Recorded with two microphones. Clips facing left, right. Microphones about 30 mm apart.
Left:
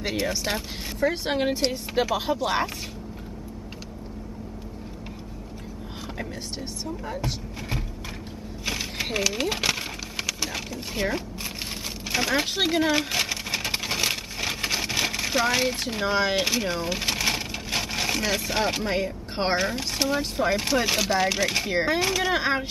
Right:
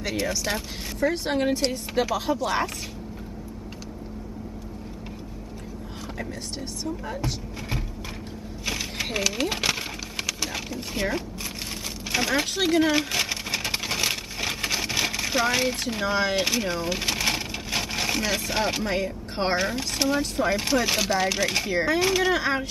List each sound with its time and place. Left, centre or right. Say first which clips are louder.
0.0 s speech: even; centre
6.8 s speech: right 1 dB; centre
8.6 s a sound: even; centre
12.1 s speech: even; centre
12.8 s a sound: even; centre
19.6 s speech: even; centre
21.6 s speech: even; centre
22.0 s speech: right 2 dB; centre
22.3 s speech: even; centre